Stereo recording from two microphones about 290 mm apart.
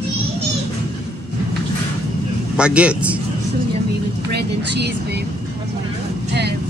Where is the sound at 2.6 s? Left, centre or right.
Centre.